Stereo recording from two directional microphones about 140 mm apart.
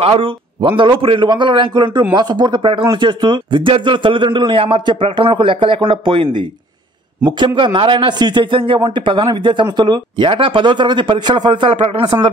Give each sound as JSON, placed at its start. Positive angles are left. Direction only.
{"t": 0.0, "sound": "a man's voice", "side_deg": -45}